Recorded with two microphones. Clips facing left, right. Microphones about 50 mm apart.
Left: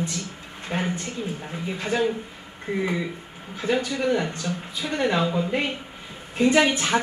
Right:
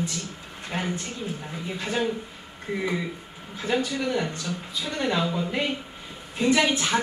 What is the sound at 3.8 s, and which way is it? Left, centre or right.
A woman's voice, left.